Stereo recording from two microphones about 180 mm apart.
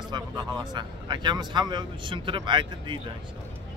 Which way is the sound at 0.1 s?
25° right (ahead or behind).